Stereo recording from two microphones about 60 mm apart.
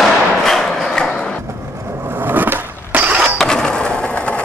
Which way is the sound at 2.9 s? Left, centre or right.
Right.